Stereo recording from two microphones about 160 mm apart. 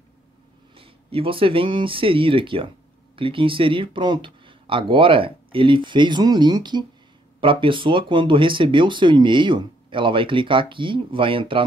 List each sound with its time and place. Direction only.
0.7 s speech: 35° right (ahead or behind)